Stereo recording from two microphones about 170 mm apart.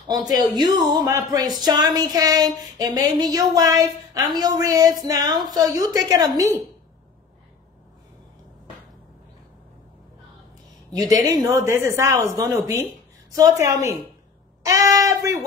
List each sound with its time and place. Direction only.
0.1 s a woman's voice: 20° right (ahead or behind)
11.0 s a woman's voice: 20° right (ahead or behind)
14.6 s a sound: 20° right (ahead or behind)